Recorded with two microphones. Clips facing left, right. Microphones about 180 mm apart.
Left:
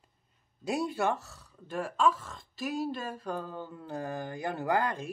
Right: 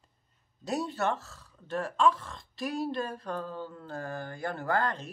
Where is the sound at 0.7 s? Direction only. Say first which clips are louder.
Left 1 dB; 10° left (ahead or behind).